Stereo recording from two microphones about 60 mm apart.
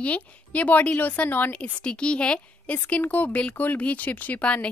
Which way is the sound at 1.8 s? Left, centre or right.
Centre.